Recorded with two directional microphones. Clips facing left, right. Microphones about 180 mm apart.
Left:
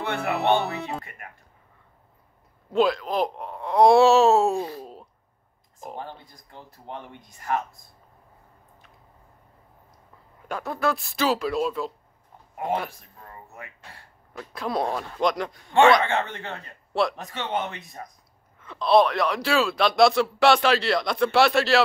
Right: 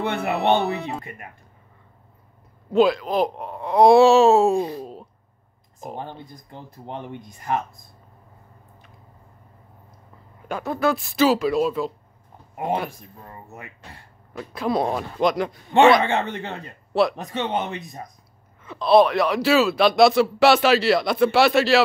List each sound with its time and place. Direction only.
0.0 s speech: 20° right (ahead or behind)
0.6 s a man's voice: centre (ahead or behind)
1.0 s speech: 20° right (ahead or behind)
2.7 s a man's voice: centre (ahead or behind)
4.6 s a man's voice: 15° right (ahead or behind)
5.9 s speech: 20° right (ahead or behind)
10.5 s a man's voice: centre (ahead or behind)
12.5 s speech: 15° right (ahead or behind)
14.3 s a man's voice: 5° right (ahead or behind)
15.7 s a man's voice: 20° right (ahead or behind)
18.6 s a man's voice: 5° right (ahead or behind)